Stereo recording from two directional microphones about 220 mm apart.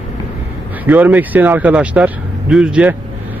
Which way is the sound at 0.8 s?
5° right (ahead or behind).